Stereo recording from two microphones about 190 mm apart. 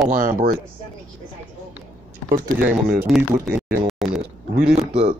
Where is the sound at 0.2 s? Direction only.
45° right (ahead or behind).